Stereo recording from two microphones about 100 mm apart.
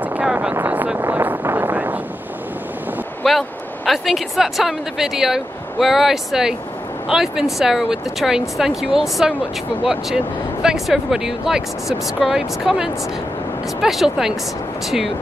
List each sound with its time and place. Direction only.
0.0 s speech: 15° right (ahead or behind)
0.6 s a sound: 20° right (ahead or behind)
3.3 s speech: centre (ahead or behind)